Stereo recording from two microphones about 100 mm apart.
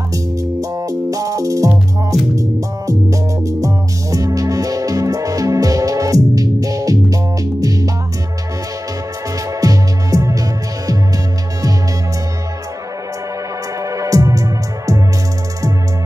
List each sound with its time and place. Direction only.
0.1 s music: 35° right (ahead or behind)
9.6 s music: 35° right (ahead or behind)
13.8 s music: 35° right (ahead or behind)